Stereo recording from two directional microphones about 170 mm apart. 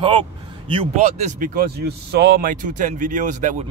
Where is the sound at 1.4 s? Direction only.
60° right (ahead or behind).